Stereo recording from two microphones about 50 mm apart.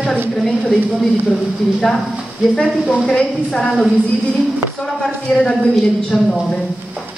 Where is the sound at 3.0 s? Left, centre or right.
Centre.